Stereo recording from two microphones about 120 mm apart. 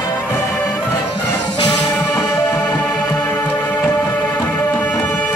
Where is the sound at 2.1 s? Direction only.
30° left (ahead or behind).